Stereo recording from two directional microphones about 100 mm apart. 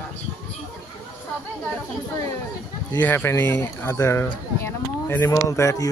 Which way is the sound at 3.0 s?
20° left (ahead or behind).